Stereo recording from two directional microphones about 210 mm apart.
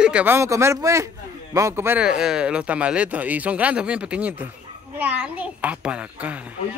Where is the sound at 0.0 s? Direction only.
5° right (ahead or behind).